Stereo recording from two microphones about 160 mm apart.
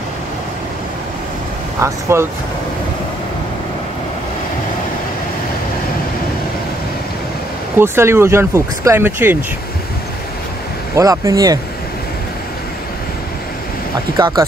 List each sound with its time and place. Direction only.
1.8 s speech: 15° right (ahead or behind)
7.8 s speech: 15° right (ahead or behind)
11.0 s speech: 20° right (ahead or behind)
14.1 s speech: 20° right (ahead or behind)